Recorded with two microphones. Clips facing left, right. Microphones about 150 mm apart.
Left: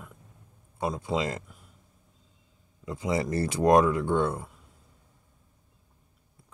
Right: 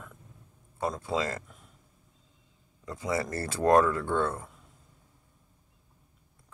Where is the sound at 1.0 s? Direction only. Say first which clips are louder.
Left 2 dB; 15° left (ahead or behind).